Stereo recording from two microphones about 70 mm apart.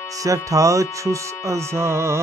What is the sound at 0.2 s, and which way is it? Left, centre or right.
Music, right.